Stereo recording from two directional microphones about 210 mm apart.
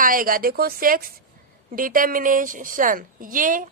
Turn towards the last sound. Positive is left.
turn(degrees=-40)  # may be behind; listen again after turning